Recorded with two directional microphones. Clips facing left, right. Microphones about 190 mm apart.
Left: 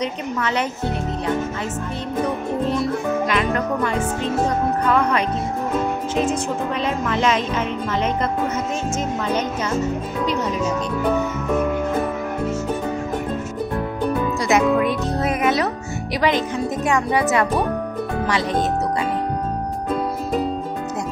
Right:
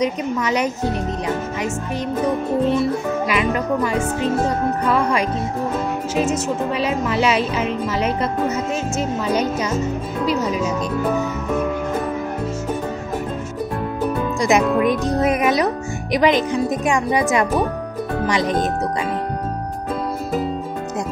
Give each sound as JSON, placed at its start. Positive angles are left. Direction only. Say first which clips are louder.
{"t": 0.0, "sound": "speech", "louder": "right 3 dB", "side_deg": -15}
{"t": 2.7, "sound": "speech", "louder": "right 2 dB", "side_deg": -5}
{"t": 6.1, "sound": "speech", "louder": "right 3 dB", "side_deg": -5}
{"t": 14.4, "sound": "speech", "louder": "right 2 dB", "side_deg": -15}